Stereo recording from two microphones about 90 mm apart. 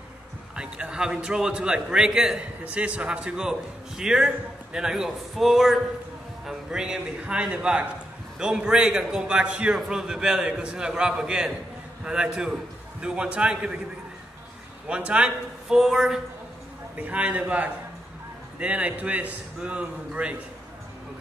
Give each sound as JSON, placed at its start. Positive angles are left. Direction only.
{"t": 0.6, "sound": "a man's voice", "side_deg": -10}
{"t": 14.9, "sound": "a man's voice", "side_deg": -15}
{"t": 16.9, "sound": "a man's voice", "side_deg": -15}